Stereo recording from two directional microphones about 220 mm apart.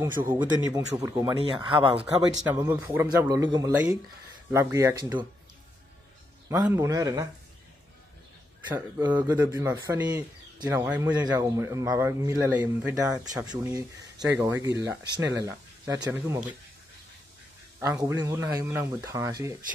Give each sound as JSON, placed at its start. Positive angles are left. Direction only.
{"t": 0.0, "sound": "speech", "side_deg": -20}
{"t": 6.5, "sound": "speech", "side_deg": -15}
{"t": 8.7, "sound": "speech", "side_deg": -10}
{"t": 10.9, "sound": "speech", "side_deg": -5}
{"t": 17.7, "sound": "speech", "side_deg": -15}